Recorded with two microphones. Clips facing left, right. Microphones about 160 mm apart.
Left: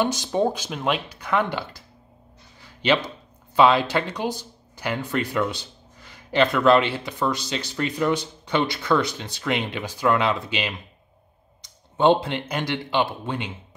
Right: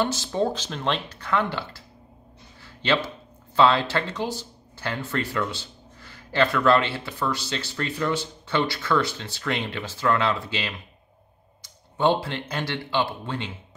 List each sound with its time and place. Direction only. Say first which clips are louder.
0.0 s speech: left 2 dB; 15° left (ahead or behind)
2.6 s a sound: left 2 dB; 15° left (ahead or behind)
3.5 s speech: left 2 dB; 15° left (ahead or behind)